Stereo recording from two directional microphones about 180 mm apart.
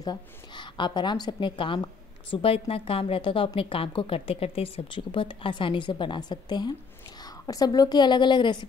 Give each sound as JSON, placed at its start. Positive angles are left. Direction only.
{"t": 0.0, "sound": "a woman's voice", "side_deg": 25}